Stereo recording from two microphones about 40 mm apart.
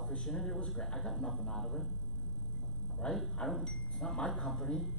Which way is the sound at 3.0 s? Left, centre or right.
Left.